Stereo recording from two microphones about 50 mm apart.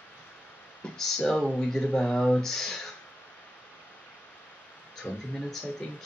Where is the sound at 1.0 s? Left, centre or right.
Centre.